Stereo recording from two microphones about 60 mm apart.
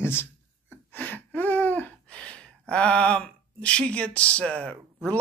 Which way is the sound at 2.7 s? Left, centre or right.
Centre.